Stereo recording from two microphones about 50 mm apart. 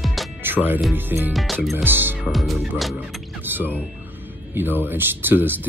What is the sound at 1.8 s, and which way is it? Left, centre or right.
Speech, right.